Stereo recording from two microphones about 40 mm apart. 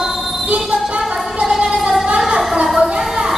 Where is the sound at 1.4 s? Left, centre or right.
Centre.